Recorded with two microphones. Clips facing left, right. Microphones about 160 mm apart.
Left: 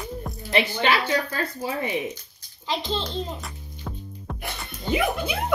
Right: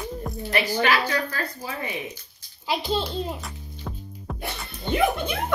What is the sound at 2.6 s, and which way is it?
Music, 10° right (ahead or behind).